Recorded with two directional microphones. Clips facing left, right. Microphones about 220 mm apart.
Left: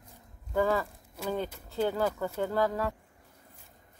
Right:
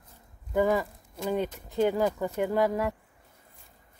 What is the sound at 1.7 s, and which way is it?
Speech, 15° right (ahead or behind).